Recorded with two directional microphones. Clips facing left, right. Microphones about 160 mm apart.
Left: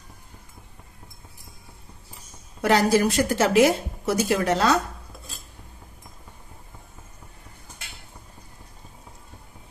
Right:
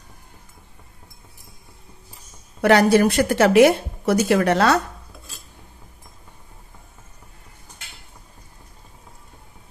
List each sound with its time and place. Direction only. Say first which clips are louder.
2.6 s a woman's voice: right 5 dB; 60° right (ahead or behind)